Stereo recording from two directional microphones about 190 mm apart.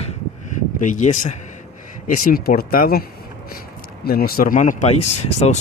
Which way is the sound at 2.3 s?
50° left (ahead or behind).